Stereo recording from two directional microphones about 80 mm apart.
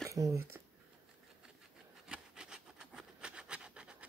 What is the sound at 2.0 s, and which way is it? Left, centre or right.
Rub, centre.